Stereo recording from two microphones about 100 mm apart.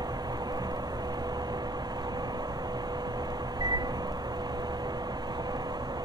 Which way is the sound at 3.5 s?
45° right (ahead or behind).